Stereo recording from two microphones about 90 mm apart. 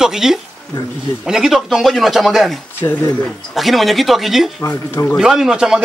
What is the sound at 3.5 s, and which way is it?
Speech, centre (ahead or behind).